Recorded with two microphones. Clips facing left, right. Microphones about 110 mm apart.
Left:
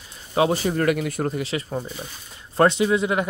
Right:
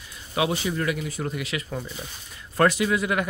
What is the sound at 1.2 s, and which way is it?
Speech, 30° left (ahead or behind).